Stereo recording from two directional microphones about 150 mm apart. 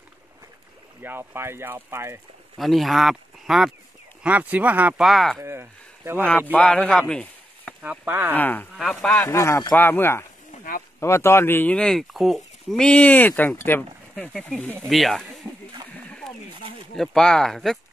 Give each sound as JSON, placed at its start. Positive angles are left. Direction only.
{"t": 1.0, "sound": "speech", "side_deg": -15}
{"t": 2.5, "sound": "speech", "side_deg": 0}
{"t": 5.4, "sound": "speech", "side_deg": -15}
{"t": 6.5, "sound": "speech", "side_deg": 10}
{"t": 6.9, "sound": "chopping", "side_deg": 5}
{"t": 7.8, "sound": "speech", "side_deg": -10}
{"t": 8.4, "sound": "speech", "side_deg": 10}
{"t": 9.3, "sound": "speech", "side_deg": 20}
{"t": 14.9, "sound": "speech", "side_deg": 0}
{"t": 16.1, "sound": "a sound", "side_deg": 5}
{"t": 16.9, "sound": "speech", "side_deg": 5}